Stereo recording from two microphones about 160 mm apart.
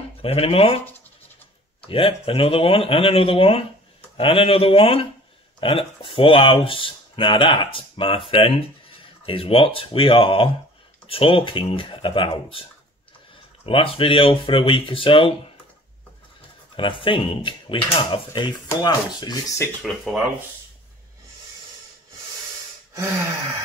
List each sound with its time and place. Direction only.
0.2 s speech: 35° left (ahead or behind)
1.9 s speech: 35° left (ahead or behind)
13.7 s speech: 35° left (ahead or behind)
16.7 s speech: 30° left (ahead or behind)
19.8 s speech: centre (ahead or behind)